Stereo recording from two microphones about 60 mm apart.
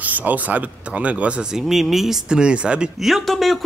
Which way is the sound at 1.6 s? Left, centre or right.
Centre.